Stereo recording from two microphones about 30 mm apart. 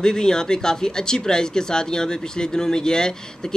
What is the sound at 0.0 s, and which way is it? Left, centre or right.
Speech, left.